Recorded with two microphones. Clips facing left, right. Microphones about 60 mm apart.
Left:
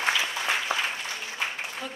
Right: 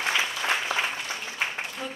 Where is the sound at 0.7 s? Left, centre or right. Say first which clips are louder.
Right 1 dB; left.